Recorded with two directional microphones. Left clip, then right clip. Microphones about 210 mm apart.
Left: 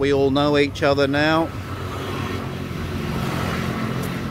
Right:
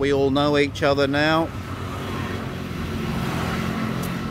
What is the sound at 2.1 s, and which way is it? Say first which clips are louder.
Vehicle: left 2 dB; 50° left (ahead or behind).